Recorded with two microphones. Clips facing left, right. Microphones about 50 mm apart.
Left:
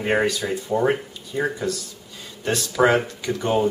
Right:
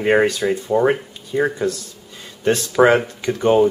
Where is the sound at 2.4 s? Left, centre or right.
Right.